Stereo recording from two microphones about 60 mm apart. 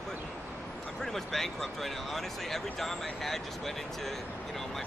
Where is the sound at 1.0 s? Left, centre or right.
Centre.